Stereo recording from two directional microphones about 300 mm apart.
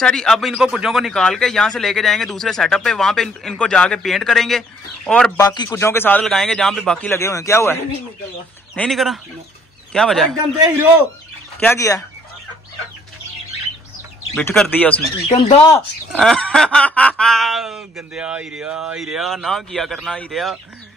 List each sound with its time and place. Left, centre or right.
0.0 s a man's voice: centre
11.6 s a man's voice: centre
14.3 s speech: centre
15.2 s speech: centre
16.1 s speech: centre